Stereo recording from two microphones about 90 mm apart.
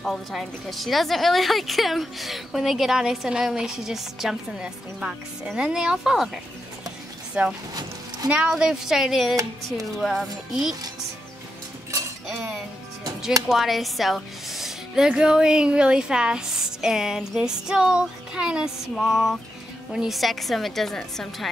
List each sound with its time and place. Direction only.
0.0 s a woman's voice: centre (ahead or behind)
13.5 s a woman's voice: centre (ahead or behind)